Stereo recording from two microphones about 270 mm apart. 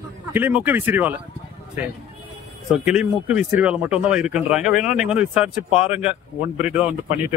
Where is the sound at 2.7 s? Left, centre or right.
Centre.